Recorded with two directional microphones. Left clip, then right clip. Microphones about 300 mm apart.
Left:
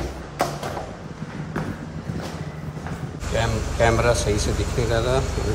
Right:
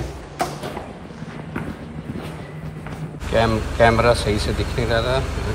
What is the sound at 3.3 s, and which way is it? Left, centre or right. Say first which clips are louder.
Speech: right 6 dB; centre.